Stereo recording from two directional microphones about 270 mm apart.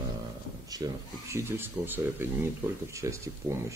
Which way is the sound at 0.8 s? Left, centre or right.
Centre.